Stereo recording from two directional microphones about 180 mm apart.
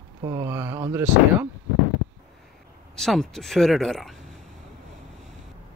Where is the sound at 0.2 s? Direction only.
20° right (ahead or behind).